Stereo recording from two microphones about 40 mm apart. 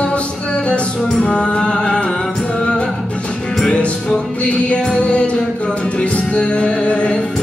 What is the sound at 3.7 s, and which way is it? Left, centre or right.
Music, left.